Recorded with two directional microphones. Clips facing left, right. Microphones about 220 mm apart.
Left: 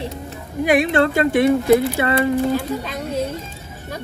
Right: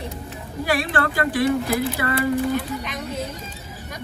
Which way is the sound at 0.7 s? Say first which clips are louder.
Left 7 dB; 20° left (ahead or behind).